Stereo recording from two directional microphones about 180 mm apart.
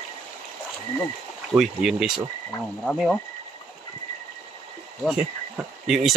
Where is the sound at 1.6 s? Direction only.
5° right (ahead or behind).